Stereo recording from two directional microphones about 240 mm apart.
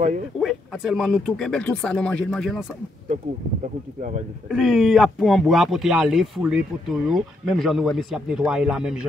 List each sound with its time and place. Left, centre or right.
0.4 s speech: centre
4.5 s speech: centre